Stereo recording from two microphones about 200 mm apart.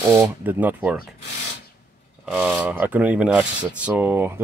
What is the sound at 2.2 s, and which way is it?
Speech, 5° right (ahead or behind).